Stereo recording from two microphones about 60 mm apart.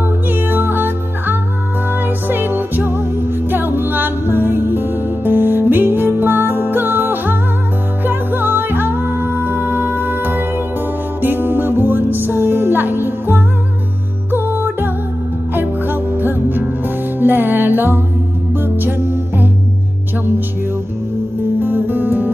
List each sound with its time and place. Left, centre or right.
0.3 s music: right
21.5 s music: right